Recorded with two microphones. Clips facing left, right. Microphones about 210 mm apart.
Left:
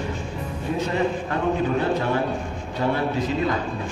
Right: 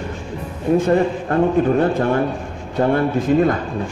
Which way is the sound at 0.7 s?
50° right (ahead or behind).